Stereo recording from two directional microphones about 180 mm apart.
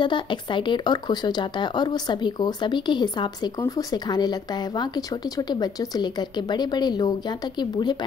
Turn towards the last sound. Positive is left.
turn(degrees=25)  # may be behind; listen again after turning